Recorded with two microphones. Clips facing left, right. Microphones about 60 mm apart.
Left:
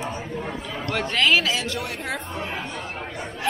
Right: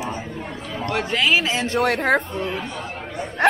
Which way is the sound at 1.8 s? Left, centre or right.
Right.